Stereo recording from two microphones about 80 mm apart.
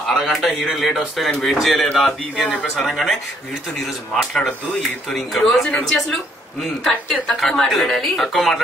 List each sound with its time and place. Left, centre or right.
0.1 s speech: centre
4.2 s speech: centre